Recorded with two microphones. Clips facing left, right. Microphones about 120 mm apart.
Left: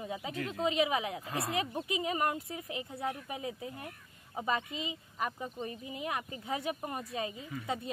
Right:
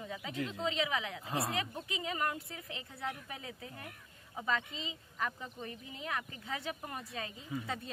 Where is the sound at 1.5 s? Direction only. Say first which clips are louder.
Left 4 dB; 20° left (ahead or behind).